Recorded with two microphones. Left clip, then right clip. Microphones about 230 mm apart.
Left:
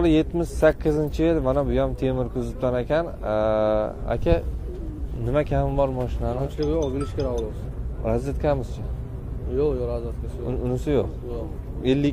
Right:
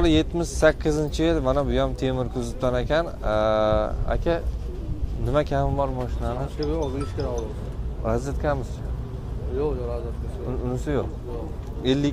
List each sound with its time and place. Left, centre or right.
0.0 s speech: centre
6.6 s speech: left
8.0 s speech: centre
9.6 s speech: left
10.6 s speech: centre
11.8 s speech: centre